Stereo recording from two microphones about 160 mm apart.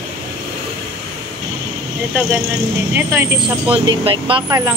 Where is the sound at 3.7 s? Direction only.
35° right (ahead or behind).